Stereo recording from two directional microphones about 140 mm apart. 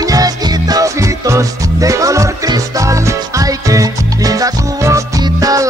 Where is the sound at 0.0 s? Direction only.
25° right (ahead or behind).